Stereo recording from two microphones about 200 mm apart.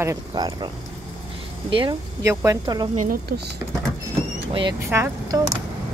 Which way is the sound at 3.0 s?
50° right (ahead or behind).